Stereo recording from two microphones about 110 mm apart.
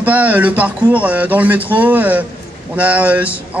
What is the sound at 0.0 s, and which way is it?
A man's voice, 15° right (ahead or behind).